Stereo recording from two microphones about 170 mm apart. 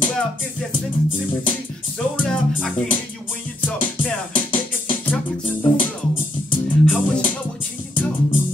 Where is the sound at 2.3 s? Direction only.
5° left (ahead or behind).